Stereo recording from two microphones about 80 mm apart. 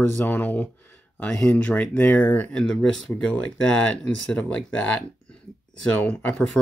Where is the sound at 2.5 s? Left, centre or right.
Centre.